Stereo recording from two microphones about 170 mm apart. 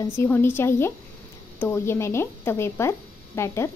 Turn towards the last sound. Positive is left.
turn(degrees=15)  # may be behind; listen again after turning